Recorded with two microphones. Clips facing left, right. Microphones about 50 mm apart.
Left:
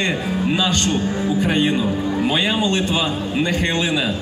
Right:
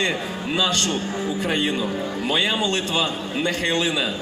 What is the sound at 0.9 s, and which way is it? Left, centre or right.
Speech, left.